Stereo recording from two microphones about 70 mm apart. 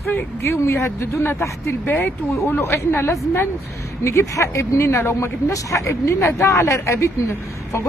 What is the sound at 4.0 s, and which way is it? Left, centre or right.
A woman's voice, left.